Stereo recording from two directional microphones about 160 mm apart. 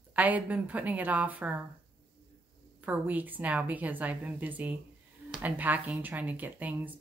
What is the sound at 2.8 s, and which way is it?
Speech, 10° right (ahead or behind).